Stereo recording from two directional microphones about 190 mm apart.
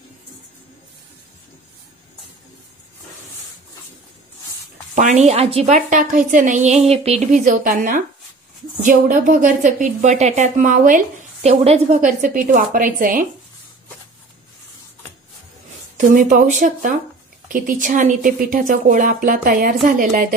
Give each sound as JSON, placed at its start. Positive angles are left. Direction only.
{"t": 4.9, "sound": "a woman's voice", "side_deg": -40}
{"t": 11.4, "sound": "speech", "side_deg": -35}
{"t": 16.0, "sound": "speech", "side_deg": -45}